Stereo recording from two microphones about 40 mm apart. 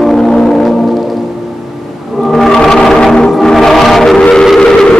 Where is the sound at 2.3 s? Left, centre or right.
Centre.